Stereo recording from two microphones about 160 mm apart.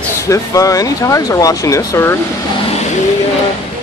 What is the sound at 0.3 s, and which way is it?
Speech, 20° left (ahead or behind).